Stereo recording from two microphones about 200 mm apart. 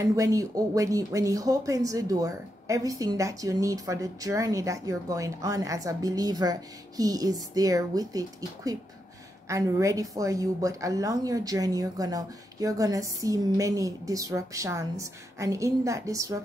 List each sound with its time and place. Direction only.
0.0 s speech: 15° right (ahead or behind)